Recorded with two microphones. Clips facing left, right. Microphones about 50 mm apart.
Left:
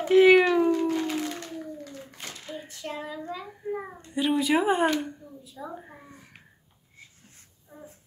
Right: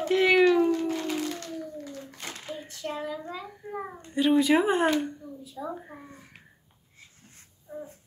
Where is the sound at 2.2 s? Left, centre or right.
Centre.